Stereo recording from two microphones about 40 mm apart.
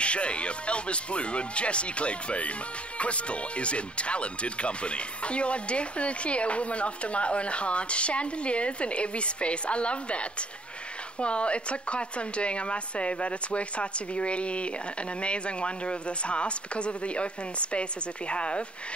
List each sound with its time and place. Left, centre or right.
0.0 s speech: left